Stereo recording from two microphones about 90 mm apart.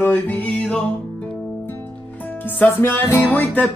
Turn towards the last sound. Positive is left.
turn(degrees=20)  # may be behind; listen again after turning